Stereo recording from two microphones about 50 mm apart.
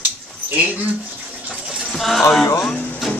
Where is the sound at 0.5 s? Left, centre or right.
Right.